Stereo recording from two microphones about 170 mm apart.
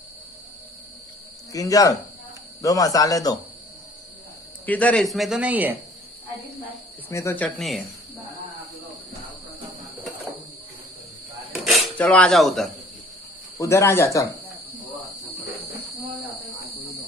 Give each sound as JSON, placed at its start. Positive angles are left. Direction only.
{"t": 1.5, "sound": "speech", "side_deg": 20}
{"t": 4.6, "sound": "speech", "side_deg": 10}
{"t": 7.1, "sound": "speech", "side_deg": 15}
{"t": 7.4, "sound": "speech", "side_deg": 0}
{"t": 11.6, "sound": "speech", "side_deg": 0}
{"t": 13.6, "sound": "speech", "side_deg": 15}